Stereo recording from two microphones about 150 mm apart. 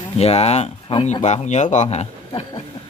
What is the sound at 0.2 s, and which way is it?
Speech, 45° left (ahead or behind).